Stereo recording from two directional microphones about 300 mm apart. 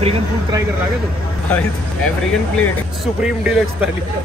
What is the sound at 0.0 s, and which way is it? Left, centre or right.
Speech, centre.